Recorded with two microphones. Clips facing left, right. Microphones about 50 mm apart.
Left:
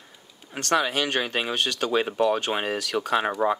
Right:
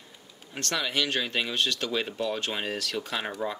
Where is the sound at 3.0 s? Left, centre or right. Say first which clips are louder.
Left 6 dB; left.